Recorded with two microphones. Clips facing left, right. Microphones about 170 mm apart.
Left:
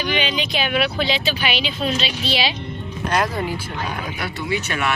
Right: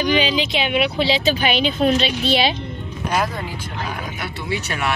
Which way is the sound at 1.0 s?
40° right (ahead or behind).